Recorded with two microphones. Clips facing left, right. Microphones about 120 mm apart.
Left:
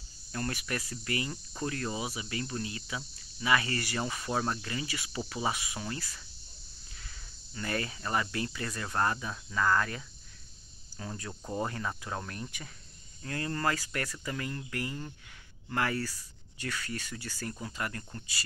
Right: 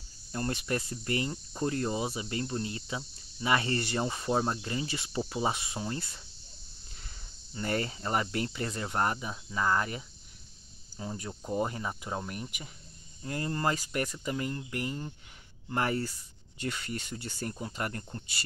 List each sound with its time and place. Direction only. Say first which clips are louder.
0.3 s speech: right 3 dB; 25° right (ahead or behind)